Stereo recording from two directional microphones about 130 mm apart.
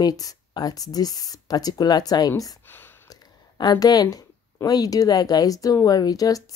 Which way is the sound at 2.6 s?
15° left (ahead or behind).